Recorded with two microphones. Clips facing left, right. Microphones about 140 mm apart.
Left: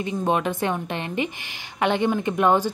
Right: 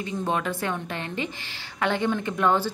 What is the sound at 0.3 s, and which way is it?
A woman's voice, 20° left (ahead or behind).